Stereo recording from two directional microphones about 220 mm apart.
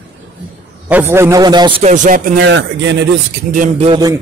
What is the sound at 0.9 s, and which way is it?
A man's voice, 10° right (ahead or behind).